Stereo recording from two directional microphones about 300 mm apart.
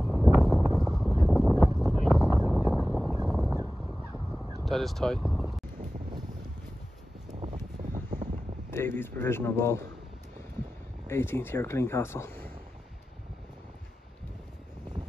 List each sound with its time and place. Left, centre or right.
0.0 s a sound: centre
4.6 s speech: centre
7.2 s wind: right
8.6 s a man's voice: centre
11.1 s a man's voice: centre